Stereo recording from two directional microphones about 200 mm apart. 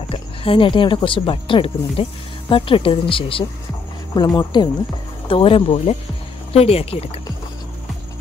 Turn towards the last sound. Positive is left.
turn(degrees=30)  # may be behind; listen again after turning